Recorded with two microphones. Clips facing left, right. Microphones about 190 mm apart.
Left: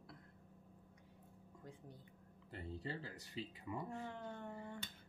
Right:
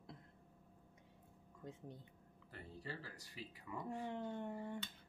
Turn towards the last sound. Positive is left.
turn(degrees=-20)  # may be behind; listen again after turning